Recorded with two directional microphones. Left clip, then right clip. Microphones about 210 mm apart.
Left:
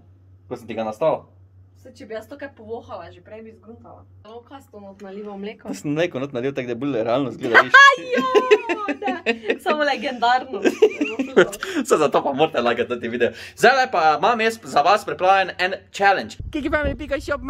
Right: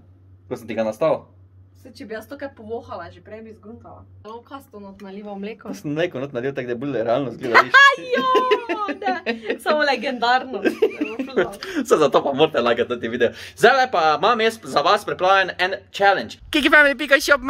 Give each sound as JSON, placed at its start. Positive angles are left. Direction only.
{"t": 0.5, "sound": "speech", "side_deg": 0}
{"t": 2.0, "sound": "speech", "side_deg": -25}
{"t": 2.9, "sound": "speech", "side_deg": -10}
{"t": 5.4, "sound": "speech", "side_deg": 5}
{"t": 5.7, "sound": "speech", "side_deg": 25}
{"t": 9.6, "sound": "a woman's voice", "side_deg": 5}
{"t": 10.6, "sound": "speech", "side_deg": 25}
{"t": 11.8, "sound": "speech", "side_deg": 10}
{"t": 16.5, "sound": "speech", "side_deg": -5}